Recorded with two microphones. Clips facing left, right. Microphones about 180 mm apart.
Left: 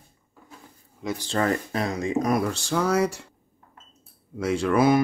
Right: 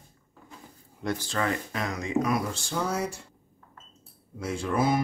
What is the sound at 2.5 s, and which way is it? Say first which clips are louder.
Speech: left 6 dB; 75° left (ahead or behind).